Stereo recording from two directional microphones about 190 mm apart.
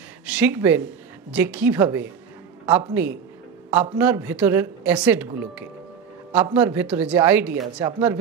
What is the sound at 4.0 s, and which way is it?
Speech, 10° right (ahead or behind).